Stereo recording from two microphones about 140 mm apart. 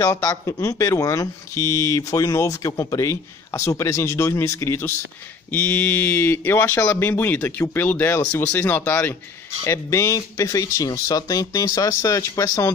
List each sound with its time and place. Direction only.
0.0 s speech: 20° left (ahead or behind)